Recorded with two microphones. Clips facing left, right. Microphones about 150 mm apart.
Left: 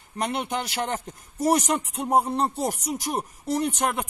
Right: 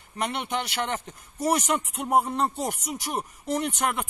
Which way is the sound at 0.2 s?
40° left (ahead or behind).